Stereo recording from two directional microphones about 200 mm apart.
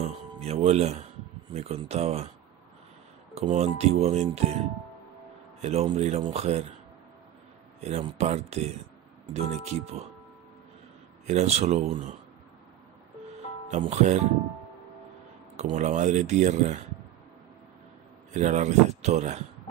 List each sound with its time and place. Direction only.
0.0 s speech: 30° right (ahead or behind)
3.3 s speech: 30° right (ahead or behind)
5.6 s speech: 30° right (ahead or behind)
7.8 s speech: 30° right (ahead or behind)
11.2 s speech: 35° right (ahead or behind)
13.7 s speech: 35° right (ahead or behind)
15.5 s speech: 35° right (ahead or behind)
18.3 s speech: 35° right (ahead or behind)